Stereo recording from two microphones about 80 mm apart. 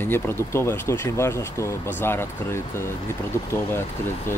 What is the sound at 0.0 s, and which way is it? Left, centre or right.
Speech, left.